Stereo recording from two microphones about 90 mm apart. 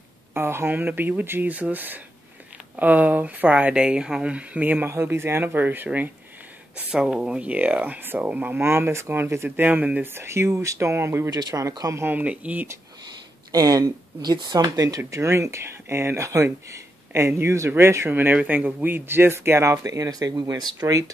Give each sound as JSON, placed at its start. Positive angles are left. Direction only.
{"t": 0.3, "sound": "speech", "side_deg": -25}
{"t": 6.9, "sound": "speech", "side_deg": -10}
{"t": 10.2, "sound": "speech", "side_deg": -30}
{"t": 11.2, "sound": "speech", "side_deg": -40}
{"t": 11.9, "sound": "speech", "side_deg": -25}
{"t": 13.5, "sound": "speech", "side_deg": -45}